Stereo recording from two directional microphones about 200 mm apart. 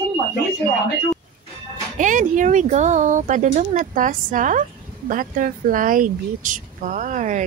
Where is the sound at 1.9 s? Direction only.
40° right (ahead or behind).